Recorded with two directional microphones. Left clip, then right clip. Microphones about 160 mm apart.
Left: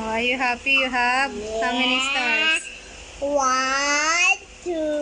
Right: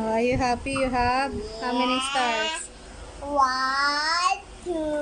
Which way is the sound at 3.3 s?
55° left (ahead or behind).